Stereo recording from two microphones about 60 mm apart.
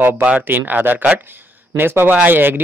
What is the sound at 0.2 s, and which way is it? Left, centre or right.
Speech, right.